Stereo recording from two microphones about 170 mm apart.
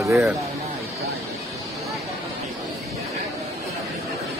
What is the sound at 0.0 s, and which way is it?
Speech, 15° right (ahead or behind).